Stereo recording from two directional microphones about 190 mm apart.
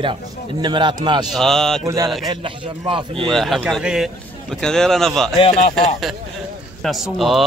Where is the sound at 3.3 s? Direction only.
Centre (ahead or behind).